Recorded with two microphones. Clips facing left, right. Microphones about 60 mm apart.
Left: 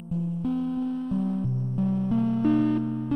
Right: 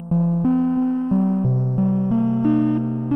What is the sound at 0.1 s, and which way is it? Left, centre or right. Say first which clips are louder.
Music: right 10 dB; right.